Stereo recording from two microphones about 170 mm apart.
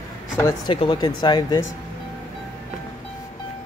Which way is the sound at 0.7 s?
30° left (ahead or behind).